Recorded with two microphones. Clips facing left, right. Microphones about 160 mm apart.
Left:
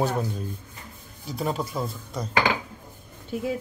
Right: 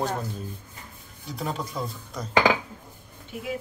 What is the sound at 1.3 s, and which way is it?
Speech, 5° left (ahead or behind).